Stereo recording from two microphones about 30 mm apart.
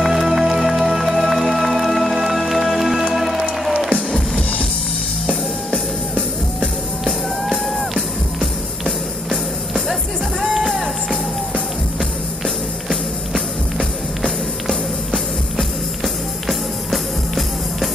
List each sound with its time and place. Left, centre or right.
0.0 s music: centre
7.1 s music: centre
13.3 s music: centre
16.0 s music: centre